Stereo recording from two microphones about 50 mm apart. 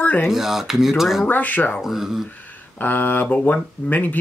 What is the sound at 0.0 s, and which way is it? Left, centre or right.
Dishes, left.